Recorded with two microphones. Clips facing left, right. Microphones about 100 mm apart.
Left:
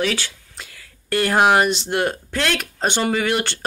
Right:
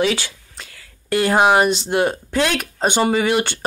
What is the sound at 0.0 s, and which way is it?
Speech, 15° right (ahead or behind).